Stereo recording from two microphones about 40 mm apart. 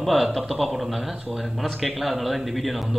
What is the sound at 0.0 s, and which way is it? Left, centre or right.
A man's voice, centre.